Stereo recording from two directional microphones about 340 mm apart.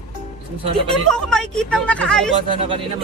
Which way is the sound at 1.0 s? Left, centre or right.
Centre.